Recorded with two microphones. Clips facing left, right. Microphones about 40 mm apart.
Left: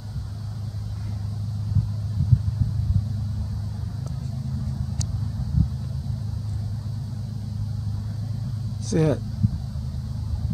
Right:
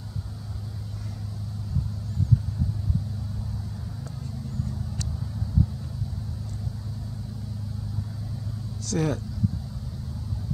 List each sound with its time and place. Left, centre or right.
8.8 s speech: centre